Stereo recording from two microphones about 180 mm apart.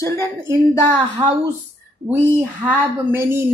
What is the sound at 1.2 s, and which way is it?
Speech, 20° right (ahead or behind).